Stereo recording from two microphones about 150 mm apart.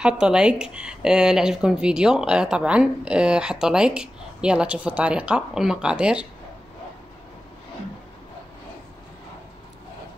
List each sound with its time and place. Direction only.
0.0 s speech: 5° right (ahead or behind)